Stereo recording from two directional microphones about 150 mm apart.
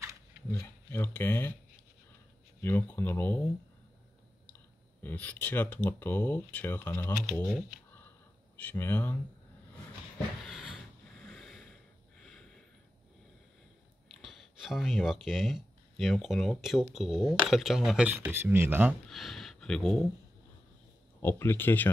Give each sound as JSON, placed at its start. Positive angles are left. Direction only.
{"t": 0.5, "sound": "speech", "side_deg": 15}
{"t": 2.6, "sound": "speech", "side_deg": 15}
{"t": 5.0, "sound": "speech", "side_deg": 10}
{"t": 7.4, "sound": "speech", "side_deg": -5}
{"t": 8.5, "sound": "speech", "side_deg": 15}
{"t": 10.4, "sound": "a sound", "side_deg": -5}
{"t": 14.2, "sound": "speech", "side_deg": 0}
{"t": 19.0, "sound": "speech", "side_deg": 0}
{"t": 21.2, "sound": "speech", "side_deg": 15}